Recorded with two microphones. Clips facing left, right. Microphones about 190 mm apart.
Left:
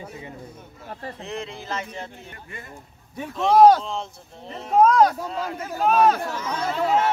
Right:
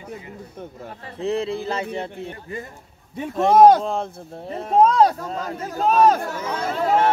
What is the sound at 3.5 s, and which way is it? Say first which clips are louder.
Speech: right 1 dB; 20° right (ahead or behind).